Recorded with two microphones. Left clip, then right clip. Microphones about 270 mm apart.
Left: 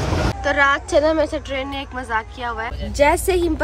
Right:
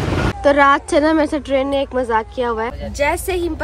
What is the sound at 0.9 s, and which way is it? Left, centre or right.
Speech, right.